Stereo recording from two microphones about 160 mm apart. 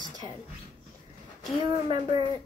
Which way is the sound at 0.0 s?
25° right (ahead or behind).